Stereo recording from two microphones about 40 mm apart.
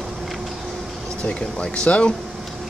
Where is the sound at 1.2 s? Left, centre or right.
Left.